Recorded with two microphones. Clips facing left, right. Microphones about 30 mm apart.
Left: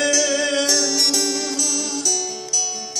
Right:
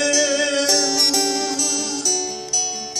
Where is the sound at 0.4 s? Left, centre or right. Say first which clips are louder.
Even; right.